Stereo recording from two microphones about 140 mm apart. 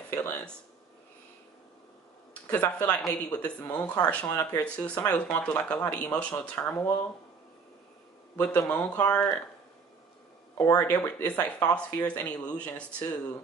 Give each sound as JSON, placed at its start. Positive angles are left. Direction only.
{"t": 0.1, "sound": "speech", "side_deg": 15}
{"t": 2.5, "sound": "speech", "side_deg": 10}
{"t": 3.7, "sound": "speech", "side_deg": 25}
{"t": 4.0, "sound": "speech", "side_deg": 10}
{"t": 8.4, "sound": "speech", "side_deg": 10}
{"t": 10.8, "sound": "speech", "side_deg": 15}